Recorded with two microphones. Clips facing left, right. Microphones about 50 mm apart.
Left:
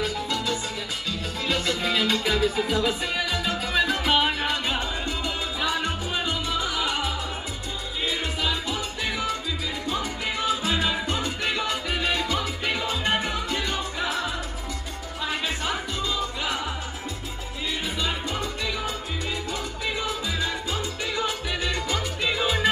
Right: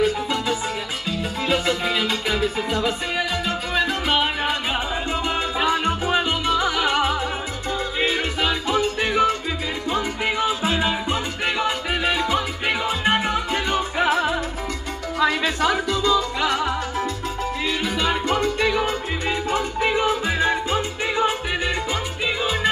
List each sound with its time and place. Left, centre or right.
0.0 s music: right
2.7 s music: centre
5.6 s music: right
6.4 s music: right
10.4 s salsa music: right
13.1 s music: right
13.9 s music: right
15.1 s music: right
17.6 s salsa music: right
22.2 s music: centre